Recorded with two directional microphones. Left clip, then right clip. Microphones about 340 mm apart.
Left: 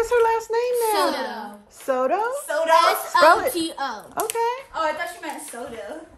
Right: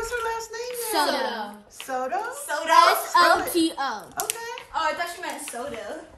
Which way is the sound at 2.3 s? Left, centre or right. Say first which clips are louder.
Right 2 dB; centre.